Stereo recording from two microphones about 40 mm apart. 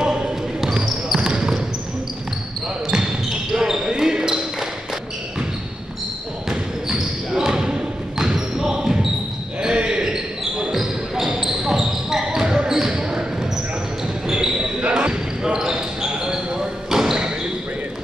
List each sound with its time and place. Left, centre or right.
0.0 s basketball bounce: centre
3.3 s basketball bounce: centre
6.5 s basketball bounce: centre
14.8 s basketball bounce: right
15.4 s basketball bounce: centre